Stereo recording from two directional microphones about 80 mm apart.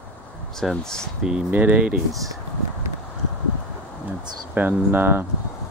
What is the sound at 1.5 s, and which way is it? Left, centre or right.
Speech, centre.